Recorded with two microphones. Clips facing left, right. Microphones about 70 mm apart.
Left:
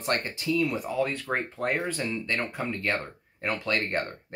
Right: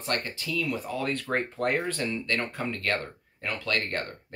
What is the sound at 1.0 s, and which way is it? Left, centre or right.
Speech, centre.